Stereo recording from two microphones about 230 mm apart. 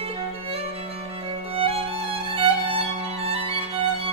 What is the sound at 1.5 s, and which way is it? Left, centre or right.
Music, right.